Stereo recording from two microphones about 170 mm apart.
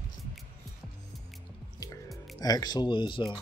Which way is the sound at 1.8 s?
20° left (ahead or behind).